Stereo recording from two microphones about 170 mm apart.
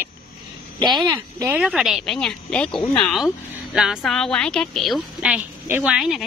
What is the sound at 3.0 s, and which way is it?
A woman's voice, centre (ahead or behind).